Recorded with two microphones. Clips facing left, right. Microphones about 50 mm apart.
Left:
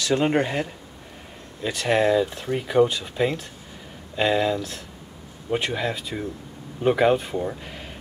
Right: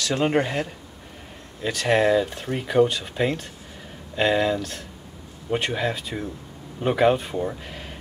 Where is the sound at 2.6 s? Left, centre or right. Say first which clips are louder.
Even; centre.